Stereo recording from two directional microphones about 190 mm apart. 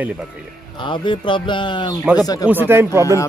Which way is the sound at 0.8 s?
25° left (ahead or behind).